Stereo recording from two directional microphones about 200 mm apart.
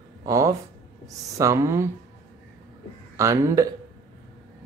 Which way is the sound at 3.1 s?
15° right (ahead or behind).